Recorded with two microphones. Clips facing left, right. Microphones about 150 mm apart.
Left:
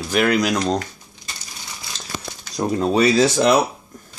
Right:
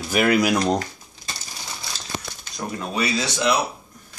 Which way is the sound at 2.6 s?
35° left (ahead or behind).